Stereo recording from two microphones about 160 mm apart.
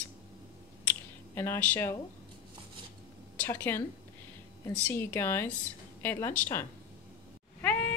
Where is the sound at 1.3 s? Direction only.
15° left (ahead or behind).